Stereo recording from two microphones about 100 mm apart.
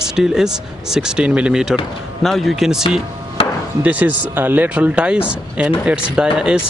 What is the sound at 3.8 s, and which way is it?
Speech, 15° right (ahead or behind).